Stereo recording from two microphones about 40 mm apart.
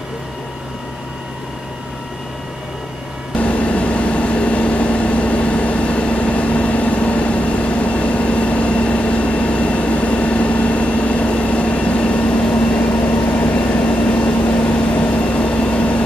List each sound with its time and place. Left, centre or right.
3.3 s vehicle: left
13.0 s vehicle: left